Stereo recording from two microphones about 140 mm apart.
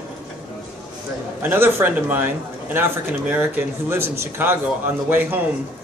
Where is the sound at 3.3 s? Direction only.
15° right (ahead or behind).